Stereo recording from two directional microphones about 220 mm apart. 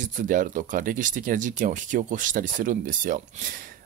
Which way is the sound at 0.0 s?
35° right (ahead or behind).